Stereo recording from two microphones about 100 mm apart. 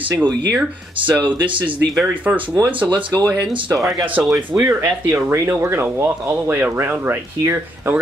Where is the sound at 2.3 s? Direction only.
20° right (ahead or behind).